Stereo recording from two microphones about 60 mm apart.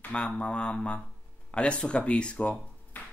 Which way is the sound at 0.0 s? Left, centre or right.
Centre.